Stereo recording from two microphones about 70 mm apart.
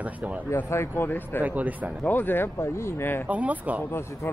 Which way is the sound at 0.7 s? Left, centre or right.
Left.